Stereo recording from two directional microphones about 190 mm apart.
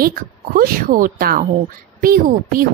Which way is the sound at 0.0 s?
50° right (ahead or behind).